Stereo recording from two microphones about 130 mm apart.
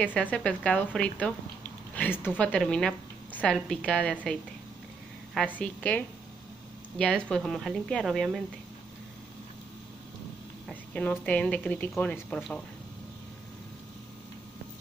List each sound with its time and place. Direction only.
0.0 s a woman's voice: 10° left (ahead or behind)
5.6 s a woman's voice: 10° left (ahead or behind)
10.7 s a woman's voice: 10° left (ahead or behind)